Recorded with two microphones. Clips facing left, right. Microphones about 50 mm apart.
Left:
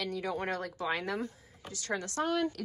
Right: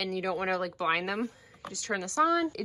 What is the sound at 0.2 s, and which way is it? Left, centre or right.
Speech, right.